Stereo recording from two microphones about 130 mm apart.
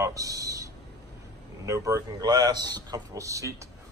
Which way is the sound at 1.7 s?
25° right (ahead or behind).